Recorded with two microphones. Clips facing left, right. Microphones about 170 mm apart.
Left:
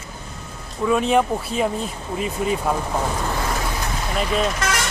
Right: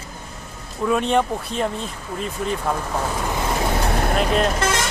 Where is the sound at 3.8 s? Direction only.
60° right (ahead or behind).